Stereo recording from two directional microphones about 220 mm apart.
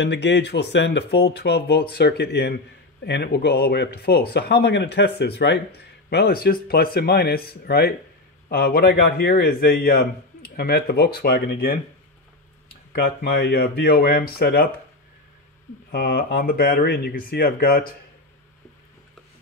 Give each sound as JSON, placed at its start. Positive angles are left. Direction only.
{"t": 0.0, "sound": "speech", "side_deg": 50}
{"t": 12.9, "sound": "speech", "side_deg": 45}
{"t": 15.9, "sound": "speech", "side_deg": 45}